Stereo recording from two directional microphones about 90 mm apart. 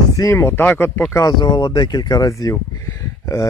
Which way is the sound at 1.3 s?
50° left (ahead or behind).